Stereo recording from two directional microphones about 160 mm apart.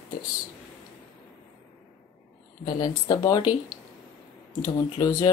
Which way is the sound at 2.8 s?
25° left (ahead or behind).